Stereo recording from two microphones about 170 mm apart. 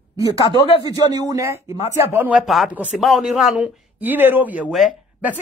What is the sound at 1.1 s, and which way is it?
Speech, 20° right (ahead or behind).